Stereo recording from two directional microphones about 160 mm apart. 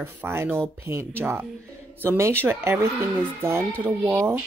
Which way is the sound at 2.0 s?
15° right (ahead or behind).